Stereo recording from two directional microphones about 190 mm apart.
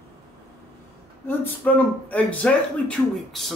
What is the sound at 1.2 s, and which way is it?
A man's voice, 10° left (ahead or behind).